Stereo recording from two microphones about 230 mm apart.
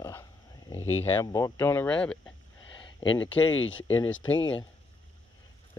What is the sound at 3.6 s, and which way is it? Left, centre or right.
Speech, left.